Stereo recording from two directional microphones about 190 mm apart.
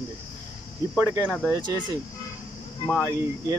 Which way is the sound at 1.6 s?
25° right (ahead or behind).